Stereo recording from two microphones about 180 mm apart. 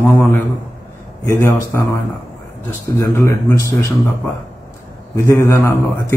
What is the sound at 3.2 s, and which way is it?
Speech, 15° left (ahead or behind).